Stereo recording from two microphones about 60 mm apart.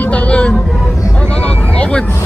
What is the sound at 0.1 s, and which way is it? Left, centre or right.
Music, left.